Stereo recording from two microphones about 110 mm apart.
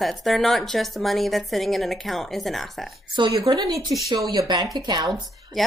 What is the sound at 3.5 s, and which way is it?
Speech, 35° right (ahead or behind).